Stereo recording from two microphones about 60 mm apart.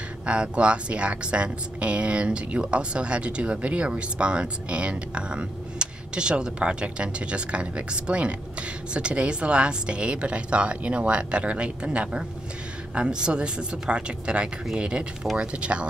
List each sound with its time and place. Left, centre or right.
0.3 s speech: centre